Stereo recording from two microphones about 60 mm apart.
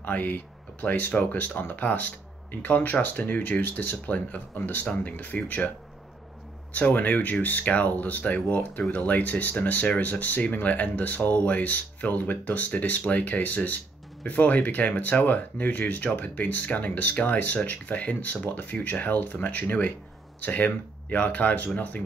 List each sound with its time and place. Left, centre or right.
0.0 s speech: left
6.7 s speech: left